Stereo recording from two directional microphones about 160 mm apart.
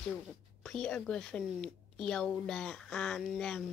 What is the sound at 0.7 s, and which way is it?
A woman's voice, 5° left (ahead or behind).